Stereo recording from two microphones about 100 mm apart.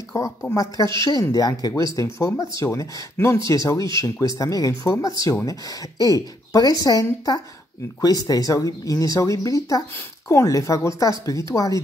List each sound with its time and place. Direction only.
0.1 s speech: 35° left (ahead or behind)